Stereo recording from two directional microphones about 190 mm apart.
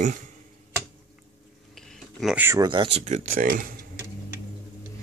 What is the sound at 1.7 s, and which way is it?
Speech, centre (ahead or behind).